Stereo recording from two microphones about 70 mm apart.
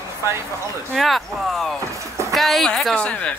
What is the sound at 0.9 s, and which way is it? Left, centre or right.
Speech, centre.